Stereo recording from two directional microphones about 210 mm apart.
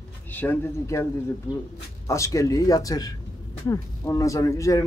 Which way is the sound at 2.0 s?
15° left (ahead or behind).